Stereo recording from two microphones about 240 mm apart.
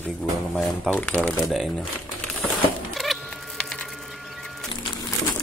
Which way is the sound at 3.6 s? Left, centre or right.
Centre.